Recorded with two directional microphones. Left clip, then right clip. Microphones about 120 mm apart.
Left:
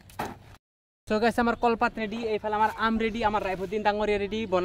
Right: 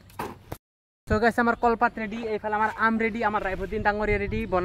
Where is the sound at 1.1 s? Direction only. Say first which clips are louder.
Right 2 dB; 15° right (ahead or behind).